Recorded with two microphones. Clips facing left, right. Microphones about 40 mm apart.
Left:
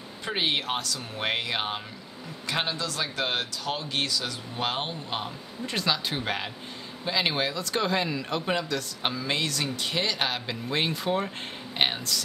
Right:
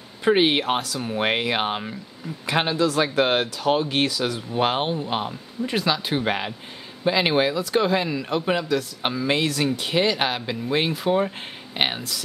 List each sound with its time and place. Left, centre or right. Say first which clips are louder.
0.2 s a man's voice: right 9 dB; right